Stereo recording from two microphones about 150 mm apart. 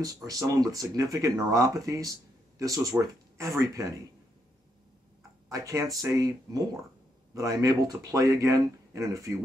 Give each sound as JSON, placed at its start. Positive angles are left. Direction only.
{"t": 0.0, "sound": "speech", "side_deg": -25}
{"t": 5.5, "sound": "speech", "side_deg": -20}